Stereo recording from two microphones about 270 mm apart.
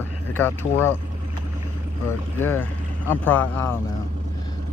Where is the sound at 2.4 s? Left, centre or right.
Centre.